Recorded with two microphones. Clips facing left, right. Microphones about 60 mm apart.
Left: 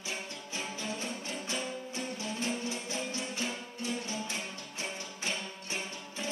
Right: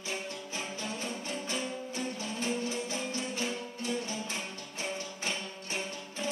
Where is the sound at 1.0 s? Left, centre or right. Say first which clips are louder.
Right 1 dB; centre.